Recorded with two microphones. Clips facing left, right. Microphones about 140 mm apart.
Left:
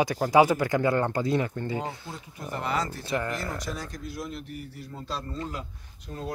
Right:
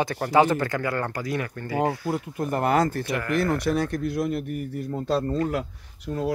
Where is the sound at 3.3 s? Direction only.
65° right (ahead or behind).